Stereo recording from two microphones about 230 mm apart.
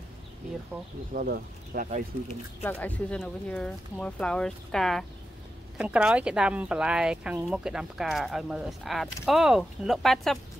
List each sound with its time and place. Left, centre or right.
1.1 s speech: right
2.6 s speech: centre